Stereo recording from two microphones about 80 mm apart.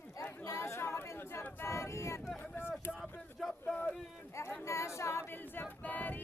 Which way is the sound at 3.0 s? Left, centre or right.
Centre.